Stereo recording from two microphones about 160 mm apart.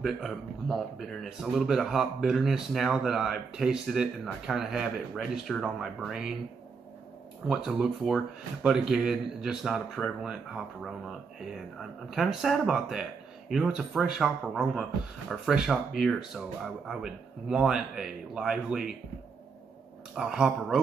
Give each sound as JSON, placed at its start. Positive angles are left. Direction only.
{"t": 0.0, "sound": "speech", "side_deg": 0}
{"t": 7.4, "sound": "speech", "side_deg": -5}
{"t": 20.2, "sound": "speech", "side_deg": -5}